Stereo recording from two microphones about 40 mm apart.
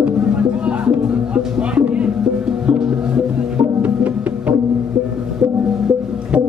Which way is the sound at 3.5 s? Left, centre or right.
Right.